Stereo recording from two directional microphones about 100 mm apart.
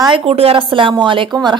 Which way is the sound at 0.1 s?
80° right.